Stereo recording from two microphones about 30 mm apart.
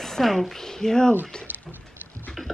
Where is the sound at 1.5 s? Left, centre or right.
Right.